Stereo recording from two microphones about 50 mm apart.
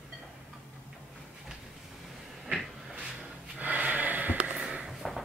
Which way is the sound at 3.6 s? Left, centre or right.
Right.